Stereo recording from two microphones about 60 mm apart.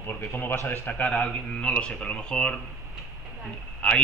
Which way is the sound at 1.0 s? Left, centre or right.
Centre.